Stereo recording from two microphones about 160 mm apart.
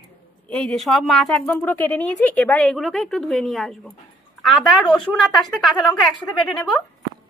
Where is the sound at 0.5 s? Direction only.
5° left (ahead or behind).